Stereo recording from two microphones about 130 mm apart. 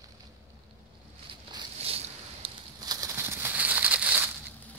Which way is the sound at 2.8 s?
30° right (ahead or behind).